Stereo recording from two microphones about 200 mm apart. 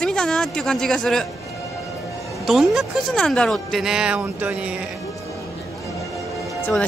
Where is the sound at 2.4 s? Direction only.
Centre (ahead or behind).